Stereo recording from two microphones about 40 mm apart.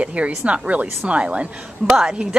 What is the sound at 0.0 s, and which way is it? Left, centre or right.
A woman's voice, right.